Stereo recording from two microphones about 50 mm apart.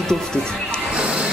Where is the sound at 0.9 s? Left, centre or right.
Right.